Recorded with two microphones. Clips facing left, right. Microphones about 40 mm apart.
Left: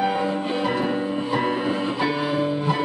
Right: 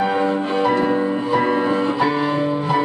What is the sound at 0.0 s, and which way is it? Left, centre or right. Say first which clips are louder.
Music: right 4 dB; centre.